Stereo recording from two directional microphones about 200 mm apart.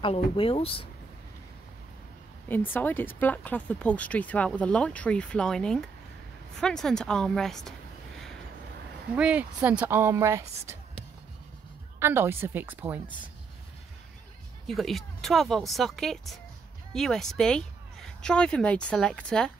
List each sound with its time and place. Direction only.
0.0 s speech: 25° left (ahead or behind)
2.4 s speech: 10° left (ahead or behind)
9.1 s speech: 5° right (ahead or behind)
12.0 s speech: 10° right (ahead or behind)
14.7 s speech: centre (ahead or behind)